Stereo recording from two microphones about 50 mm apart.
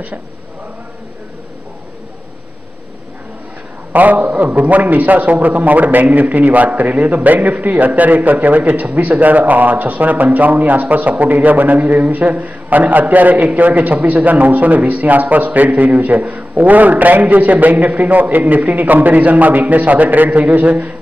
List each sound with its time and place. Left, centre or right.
3.9 s a man's voice: right